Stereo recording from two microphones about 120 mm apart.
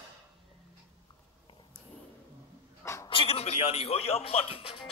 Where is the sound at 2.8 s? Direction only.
25° left (ahead or behind).